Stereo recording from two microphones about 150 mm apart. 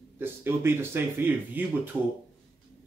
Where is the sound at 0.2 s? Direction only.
15° right (ahead or behind).